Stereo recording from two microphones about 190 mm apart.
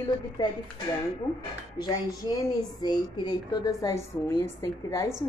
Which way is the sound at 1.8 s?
20° left (ahead or behind).